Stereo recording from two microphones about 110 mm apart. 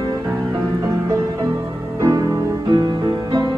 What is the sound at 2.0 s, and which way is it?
Music, 30° right (ahead or behind).